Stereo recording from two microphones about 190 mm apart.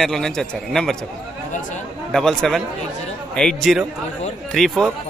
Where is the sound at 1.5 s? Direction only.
40° left (ahead or behind).